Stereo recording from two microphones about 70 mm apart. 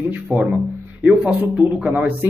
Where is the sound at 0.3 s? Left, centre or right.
Right.